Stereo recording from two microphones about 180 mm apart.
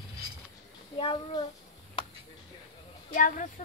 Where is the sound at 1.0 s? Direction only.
30° left (ahead or behind).